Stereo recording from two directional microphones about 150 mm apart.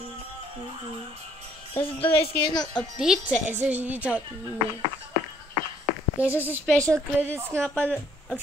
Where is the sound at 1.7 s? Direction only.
40° left (ahead or behind).